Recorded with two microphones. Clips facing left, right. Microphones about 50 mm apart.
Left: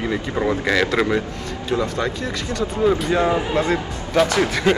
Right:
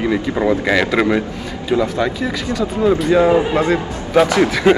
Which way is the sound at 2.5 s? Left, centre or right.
Centre.